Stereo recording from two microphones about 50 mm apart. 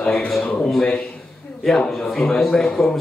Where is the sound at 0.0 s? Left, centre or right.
Left.